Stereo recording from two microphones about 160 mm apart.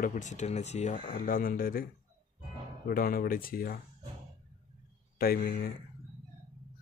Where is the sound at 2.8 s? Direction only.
65° left (ahead or behind).